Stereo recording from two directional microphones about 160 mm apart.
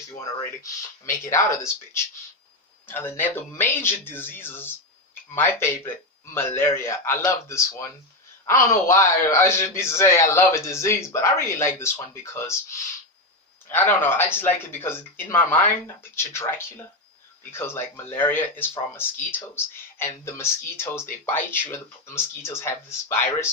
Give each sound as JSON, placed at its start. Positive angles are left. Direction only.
{"t": 0.2, "sound": "speech", "side_deg": 20}